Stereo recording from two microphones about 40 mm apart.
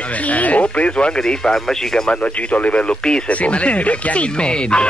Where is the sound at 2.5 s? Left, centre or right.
Left.